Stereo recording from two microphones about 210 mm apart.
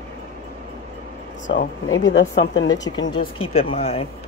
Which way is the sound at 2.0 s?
60° left (ahead or behind).